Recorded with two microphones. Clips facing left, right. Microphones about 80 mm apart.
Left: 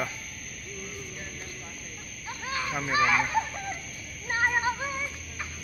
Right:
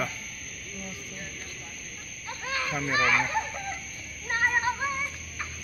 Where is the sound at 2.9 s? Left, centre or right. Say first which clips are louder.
Left 1 dB; centre.